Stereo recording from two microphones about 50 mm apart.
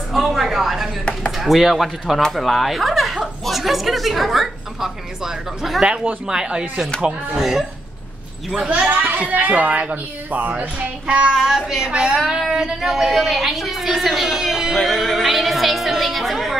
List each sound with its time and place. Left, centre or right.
0.1 s a sound: centre
1.3 s a woman's voice: centre
8.6 s speech: right
11.4 s a woman's voice: centre
14.8 s speech: centre